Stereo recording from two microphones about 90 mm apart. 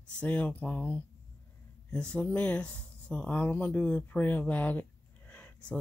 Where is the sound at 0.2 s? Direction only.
15° left (ahead or behind).